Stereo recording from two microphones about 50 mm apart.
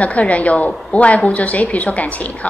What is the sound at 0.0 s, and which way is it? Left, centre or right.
A woman's voice, left.